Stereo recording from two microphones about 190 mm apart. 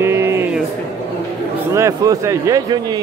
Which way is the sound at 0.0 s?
15° right (ahead or behind).